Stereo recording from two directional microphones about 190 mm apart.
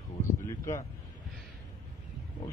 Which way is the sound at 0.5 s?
15° left (ahead or behind).